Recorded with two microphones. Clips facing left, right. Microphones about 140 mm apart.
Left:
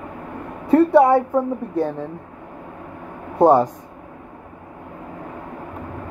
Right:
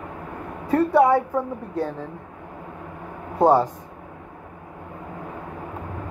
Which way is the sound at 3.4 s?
20° left (ahead or behind).